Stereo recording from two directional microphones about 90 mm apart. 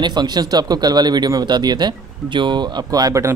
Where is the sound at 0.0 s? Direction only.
50° right (ahead or behind).